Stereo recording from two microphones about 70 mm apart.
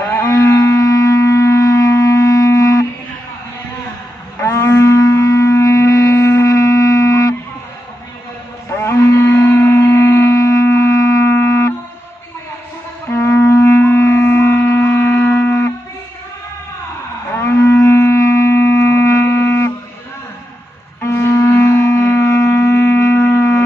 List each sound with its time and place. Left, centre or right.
0.2 s wind instrument: left
4.4 s wind instrument: left
8.6 s shofar: left
13.1 s music: left
17.4 s livestock: left
21.0 s music: left